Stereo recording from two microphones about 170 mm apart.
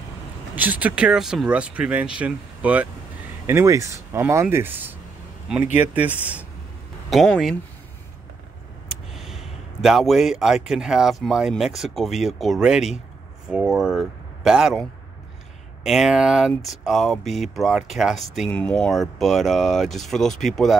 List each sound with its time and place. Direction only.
0.6 s speech: 10° right (ahead or behind)
5.9 s speech: 10° right (ahead or behind)
9.1 s speech: centre (ahead or behind)